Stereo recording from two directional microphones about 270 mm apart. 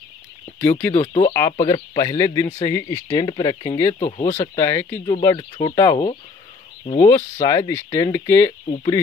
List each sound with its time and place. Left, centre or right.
0.6 s speech: centre
4.3 s speech: centre